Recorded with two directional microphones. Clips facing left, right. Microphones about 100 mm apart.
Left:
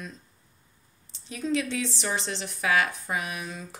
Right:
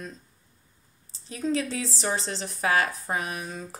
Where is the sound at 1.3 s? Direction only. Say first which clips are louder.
Right 1 dB; 35° right (ahead or behind).